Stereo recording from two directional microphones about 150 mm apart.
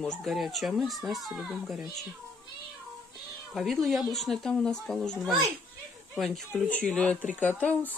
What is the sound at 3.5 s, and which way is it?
Speech, centre (ahead or behind).